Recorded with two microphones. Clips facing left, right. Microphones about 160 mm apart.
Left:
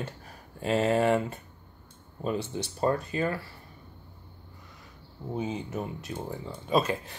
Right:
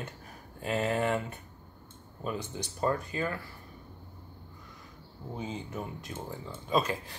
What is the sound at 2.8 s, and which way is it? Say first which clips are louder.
Speech: left 3 dB; 30° left (ahead or behind).